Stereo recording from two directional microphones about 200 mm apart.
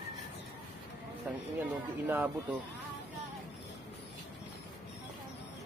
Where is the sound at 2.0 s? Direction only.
10° right (ahead or behind).